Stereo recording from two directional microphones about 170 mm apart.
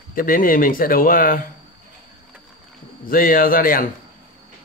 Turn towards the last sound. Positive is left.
turn(degrees=60)  # may be behind; listen again after turning